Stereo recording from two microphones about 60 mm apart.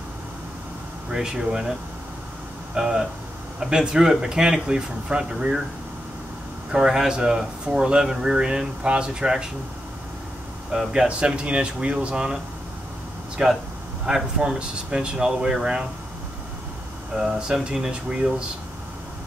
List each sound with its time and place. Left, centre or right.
1.1 s speech: centre
6.7 s speech: centre
10.9 s speech: centre
13.4 s speech: centre
17.2 s speech: centre